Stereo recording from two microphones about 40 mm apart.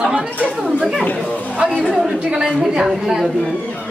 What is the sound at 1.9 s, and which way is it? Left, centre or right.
Speech, centre.